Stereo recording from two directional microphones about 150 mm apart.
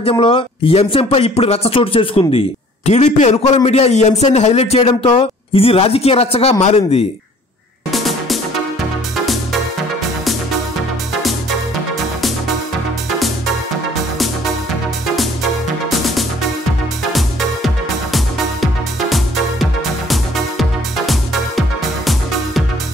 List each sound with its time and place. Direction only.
0.0 s speech: 40° left (ahead or behind)
7.9 s music: centre (ahead or behind)
18.1 s music: centre (ahead or behind)